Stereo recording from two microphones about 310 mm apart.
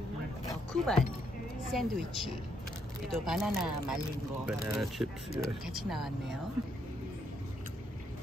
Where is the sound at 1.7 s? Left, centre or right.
Centre.